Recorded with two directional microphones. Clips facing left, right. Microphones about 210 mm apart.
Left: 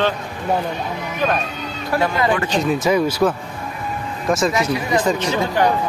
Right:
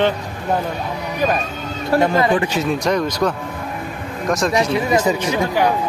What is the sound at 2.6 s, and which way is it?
Speech, 5° left (ahead or behind).